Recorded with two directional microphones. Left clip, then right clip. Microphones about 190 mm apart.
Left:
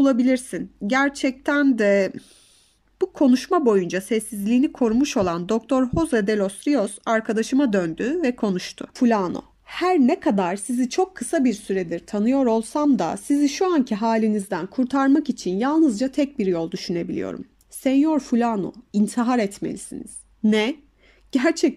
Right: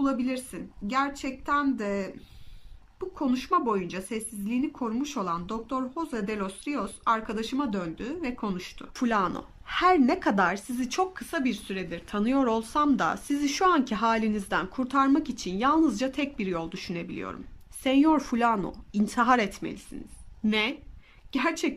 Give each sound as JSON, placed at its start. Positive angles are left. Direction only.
{"t": 0.0, "sound": "speech", "side_deg": 45}
{"t": 8.9, "sound": "a woman's voice", "side_deg": 25}
{"t": 17.8, "sound": "a woman's voice", "side_deg": 20}